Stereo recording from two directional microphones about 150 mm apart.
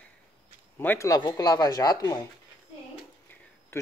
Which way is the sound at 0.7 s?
15° left (ahead or behind).